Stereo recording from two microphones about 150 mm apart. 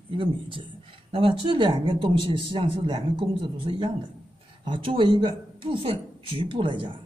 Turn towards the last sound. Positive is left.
turn(degrees=-35)  # may be behind; listen again after turning